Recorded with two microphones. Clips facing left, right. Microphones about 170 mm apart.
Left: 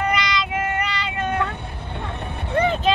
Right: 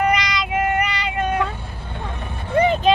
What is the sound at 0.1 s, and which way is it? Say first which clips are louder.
Child singing: right 2 dB; 15° right (ahead or behind).